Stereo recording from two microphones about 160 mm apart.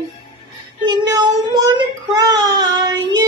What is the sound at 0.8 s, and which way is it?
Child singing, 25° right (ahead or behind).